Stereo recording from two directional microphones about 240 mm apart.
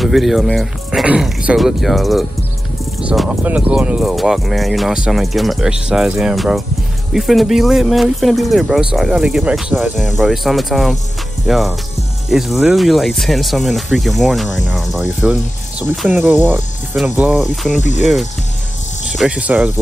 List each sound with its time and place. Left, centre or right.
0.0 s speech: centre
17.7 s speech: left
19.0 s speech: centre